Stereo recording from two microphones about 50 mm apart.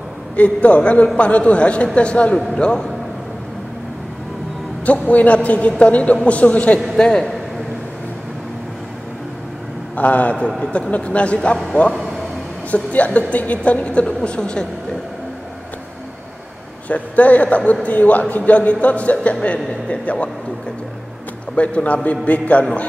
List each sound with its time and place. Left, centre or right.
0.4 s a man's voice: left
2.5 s a man's voice: centre
4.8 s a man's voice: left
6.9 s a man's voice: centre
9.9 s a man's voice: left
16.9 s a man's voice: left
21.5 s a man's voice: left